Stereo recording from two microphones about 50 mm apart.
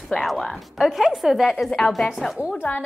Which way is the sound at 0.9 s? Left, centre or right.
Centre.